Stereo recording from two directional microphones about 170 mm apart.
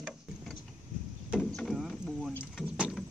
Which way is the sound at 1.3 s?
Centre (ahead or behind).